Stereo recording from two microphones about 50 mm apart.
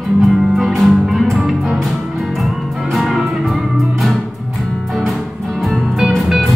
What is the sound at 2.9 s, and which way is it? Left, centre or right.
Music, centre.